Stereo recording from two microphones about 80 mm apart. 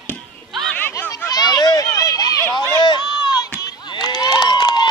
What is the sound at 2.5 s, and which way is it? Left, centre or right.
Run, left.